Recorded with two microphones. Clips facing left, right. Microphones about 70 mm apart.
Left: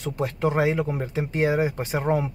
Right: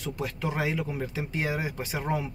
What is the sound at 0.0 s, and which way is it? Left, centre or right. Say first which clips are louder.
Speech: left 7 dB; left.